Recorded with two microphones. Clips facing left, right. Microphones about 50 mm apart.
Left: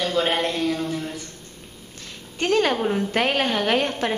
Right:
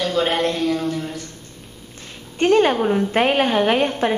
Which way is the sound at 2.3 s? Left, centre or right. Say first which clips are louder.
Right 5 dB; right.